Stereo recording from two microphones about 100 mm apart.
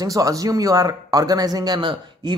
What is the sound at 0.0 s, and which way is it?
Speech, 35° right (ahead or behind).